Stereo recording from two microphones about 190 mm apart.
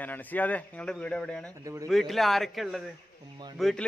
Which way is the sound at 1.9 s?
Centre (ahead or behind).